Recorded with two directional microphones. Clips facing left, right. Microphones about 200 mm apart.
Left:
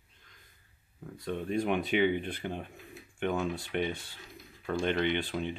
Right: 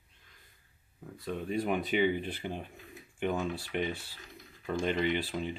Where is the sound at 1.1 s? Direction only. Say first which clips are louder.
Left 2 dB; 5° right (ahead or behind).